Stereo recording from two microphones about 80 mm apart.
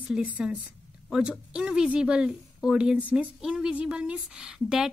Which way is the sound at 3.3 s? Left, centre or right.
Centre.